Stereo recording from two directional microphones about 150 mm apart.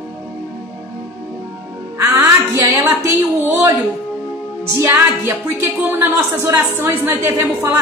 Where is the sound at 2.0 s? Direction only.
20° right (ahead or behind).